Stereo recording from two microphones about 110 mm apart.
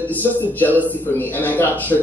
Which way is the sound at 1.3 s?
15° left (ahead or behind).